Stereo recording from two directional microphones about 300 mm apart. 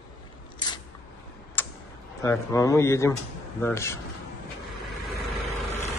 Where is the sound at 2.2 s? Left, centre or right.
Centre.